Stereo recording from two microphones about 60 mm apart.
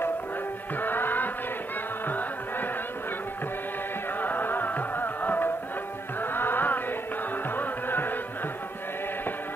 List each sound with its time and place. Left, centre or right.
0.7 s music: left
4.2 s music: left